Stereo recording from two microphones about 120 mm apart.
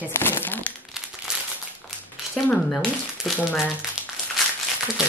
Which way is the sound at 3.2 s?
Centre (ahead or behind).